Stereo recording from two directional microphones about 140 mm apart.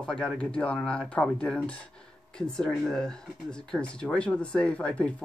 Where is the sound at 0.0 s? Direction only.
5° left (ahead or behind).